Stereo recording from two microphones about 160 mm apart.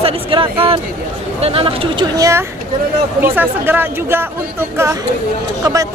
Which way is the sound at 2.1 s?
20° right (ahead or behind).